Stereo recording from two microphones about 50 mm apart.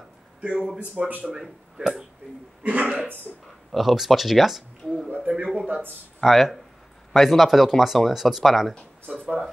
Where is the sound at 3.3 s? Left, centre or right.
Left.